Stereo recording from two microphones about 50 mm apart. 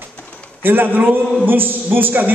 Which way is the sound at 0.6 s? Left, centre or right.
Right.